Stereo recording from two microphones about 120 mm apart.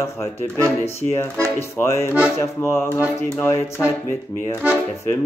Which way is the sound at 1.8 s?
20° left (ahead or behind).